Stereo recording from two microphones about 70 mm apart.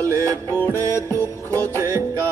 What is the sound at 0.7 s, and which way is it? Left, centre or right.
Music, right.